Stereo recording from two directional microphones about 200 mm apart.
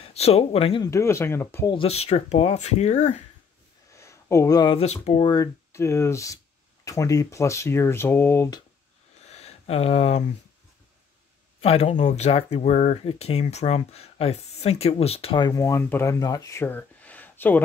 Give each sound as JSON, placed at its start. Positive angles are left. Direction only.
{"t": 0.0, "sound": "speech", "side_deg": 30}
{"t": 0.8, "sound": "speech", "side_deg": 15}
{"t": 1.7, "sound": "speech", "side_deg": 30}
{"t": 3.9, "sound": "speech", "side_deg": 15}
{"t": 9.2, "sound": "a sound", "side_deg": 35}
{"t": 11.6, "sound": "speech", "side_deg": 30}